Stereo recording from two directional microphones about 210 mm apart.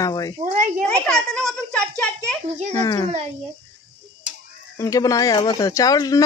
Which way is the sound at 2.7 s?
20° left (ahead or behind).